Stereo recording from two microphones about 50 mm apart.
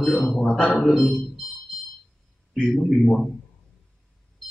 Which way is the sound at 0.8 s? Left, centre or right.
Centre.